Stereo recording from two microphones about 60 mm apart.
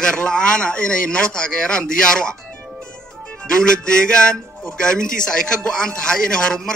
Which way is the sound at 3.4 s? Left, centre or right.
Centre.